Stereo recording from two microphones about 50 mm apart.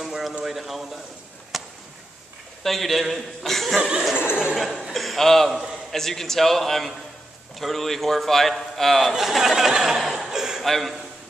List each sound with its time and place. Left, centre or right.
0.0 s a sound: centre
0.5 s a man's voice: centre
1.5 s a sound: centre
2.6 s speech: centre
4.6 s chuckle: centre
5.9 s speech: centre
9.1 s speech: centre
10.6 s a man's voice: centre